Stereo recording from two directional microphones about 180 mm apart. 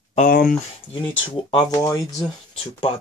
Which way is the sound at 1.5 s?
20° left (ahead or behind).